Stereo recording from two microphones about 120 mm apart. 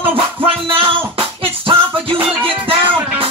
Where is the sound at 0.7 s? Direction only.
45° right (ahead or behind).